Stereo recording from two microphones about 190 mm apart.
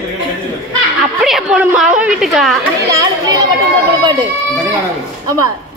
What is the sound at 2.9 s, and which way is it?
A child's voice, 20° right (ahead or behind).